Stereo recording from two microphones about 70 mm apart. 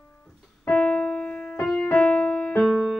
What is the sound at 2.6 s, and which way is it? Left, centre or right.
Music, centre.